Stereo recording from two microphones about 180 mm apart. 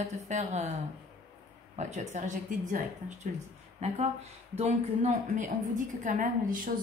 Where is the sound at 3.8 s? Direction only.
40° right (ahead or behind).